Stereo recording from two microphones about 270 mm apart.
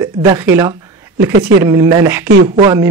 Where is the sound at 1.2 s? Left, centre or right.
Right.